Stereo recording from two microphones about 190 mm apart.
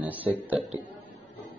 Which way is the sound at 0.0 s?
10° right (ahead or behind).